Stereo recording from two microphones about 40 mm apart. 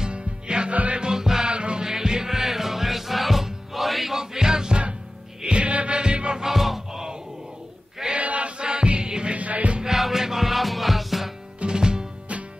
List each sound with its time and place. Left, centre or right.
0.0 s music: right
1.5 s music: right
1.9 s music: centre
4.2 s music: centre
6.4 s music: centre
8.2 s music: right
9.4 s music: right
9.8 s music: centre
11.6 s music: centre